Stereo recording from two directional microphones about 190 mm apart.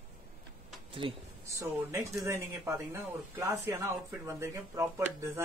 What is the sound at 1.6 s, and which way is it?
Speech, 15° right (ahead or behind).